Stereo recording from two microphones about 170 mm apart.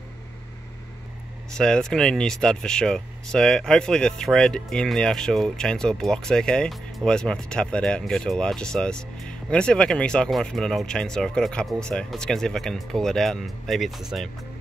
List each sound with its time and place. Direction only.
1.6 s speech: 5° left (ahead or behind)